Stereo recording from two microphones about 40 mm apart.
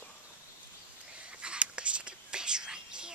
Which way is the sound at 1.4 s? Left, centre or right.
Right.